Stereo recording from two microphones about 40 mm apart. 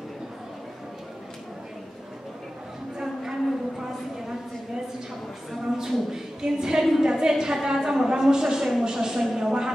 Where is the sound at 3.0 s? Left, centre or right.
Centre.